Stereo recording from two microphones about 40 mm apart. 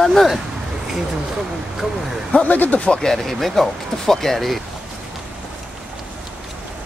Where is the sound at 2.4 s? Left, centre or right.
Left.